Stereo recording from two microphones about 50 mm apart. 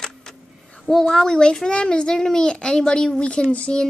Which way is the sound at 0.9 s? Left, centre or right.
Centre.